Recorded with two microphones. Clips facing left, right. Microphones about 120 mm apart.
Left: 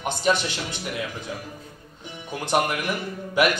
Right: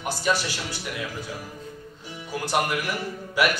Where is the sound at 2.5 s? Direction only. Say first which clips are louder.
Left 2 dB; 20° left (ahead or behind).